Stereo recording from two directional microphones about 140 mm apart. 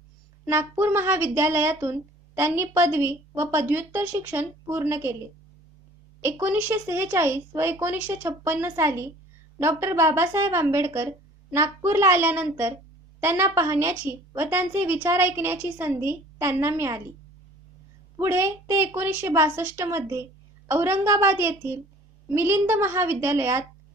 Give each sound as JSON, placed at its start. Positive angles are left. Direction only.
{"t": 0.5, "sound": "speech", "side_deg": -15}
{"t": 6.2, "sound": "a woman's voice", "side_deg": -15}
{"t": 18.1, "sound": "a woman's voice", "side_deg": -20}